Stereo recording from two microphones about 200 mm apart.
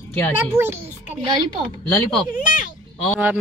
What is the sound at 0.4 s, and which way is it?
Speech, 10° right (ahead or behind).